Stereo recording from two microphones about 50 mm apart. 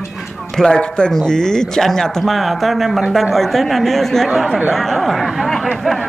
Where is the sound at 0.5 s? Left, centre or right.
Centre.